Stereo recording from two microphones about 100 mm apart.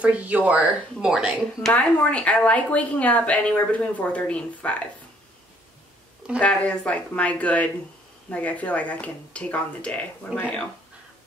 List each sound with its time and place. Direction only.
0.0 s speech: 15° right (ahead or behind)
1.7 s speech: 15° left (ahead or behind)
6.4 s speech: 10° left (ahead or behind)